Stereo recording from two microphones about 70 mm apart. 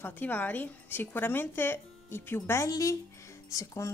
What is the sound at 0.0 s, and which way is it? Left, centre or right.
A woman's voice, left.